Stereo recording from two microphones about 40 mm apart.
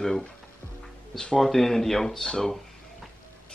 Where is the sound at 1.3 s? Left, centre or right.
Centre.